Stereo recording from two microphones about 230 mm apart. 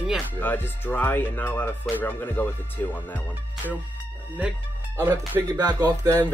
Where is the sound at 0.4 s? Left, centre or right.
Centre.